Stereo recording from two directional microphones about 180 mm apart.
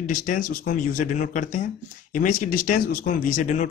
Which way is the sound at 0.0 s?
50° left (ahead or behind).